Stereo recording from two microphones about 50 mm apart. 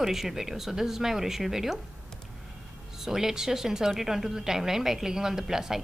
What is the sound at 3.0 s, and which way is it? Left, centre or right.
A woman's voice, centre.